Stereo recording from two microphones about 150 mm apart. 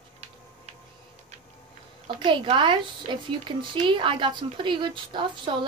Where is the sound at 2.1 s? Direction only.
30° right (ahead or behind).